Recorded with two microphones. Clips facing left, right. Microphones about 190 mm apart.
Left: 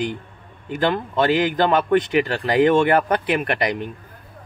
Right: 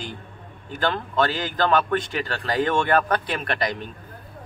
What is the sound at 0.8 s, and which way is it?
A man's voice, 20° left (ahead or behind).